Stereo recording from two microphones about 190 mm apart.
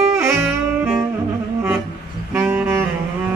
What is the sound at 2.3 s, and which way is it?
Saxophone, 10° right (ahead or behind).